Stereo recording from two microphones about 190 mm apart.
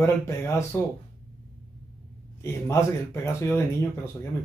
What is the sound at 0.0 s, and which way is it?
Speech, 15° left (ahead or behind).